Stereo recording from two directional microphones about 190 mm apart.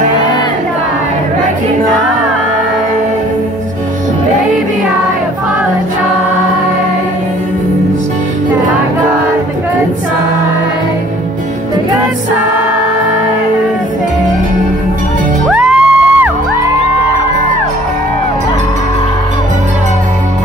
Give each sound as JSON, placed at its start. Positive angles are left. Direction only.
{"t": 15.5, "sound": "music", "side_deg": -5}